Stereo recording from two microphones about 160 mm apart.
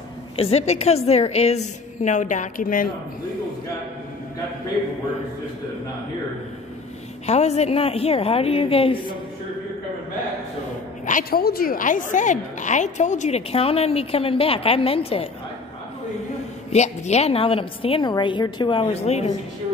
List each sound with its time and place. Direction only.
0.4 s a woman's voice: 40° left (ahead or behind); by 2.9 s 60° left (ahead or behind)
7.2 s a woman's voice: 45° left (ahead or behind)
11.1 s a woman's voice: 65° left (ahead or behind); by 15.2 s 35° left (ahead or behind)
16.7 s a woman's voice: 45° left (ahead or behind)